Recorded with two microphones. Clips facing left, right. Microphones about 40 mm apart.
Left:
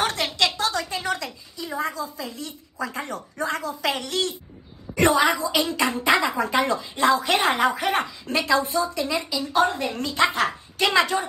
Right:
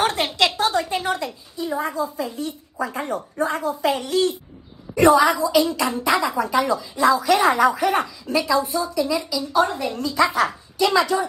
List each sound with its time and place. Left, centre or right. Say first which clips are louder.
0.0 s a sound: right 3 dB; right
2.0 s a woman's voice: right 6 dB; right
3.8 s a woman's voice: right 6 dB; left
4.9 s a woman's voice: right 4 dB; left
6.1 s a woman's voice: right 1 dB; left